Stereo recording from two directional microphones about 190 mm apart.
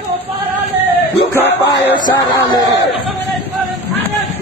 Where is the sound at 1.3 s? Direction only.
10° left (ahead or behind).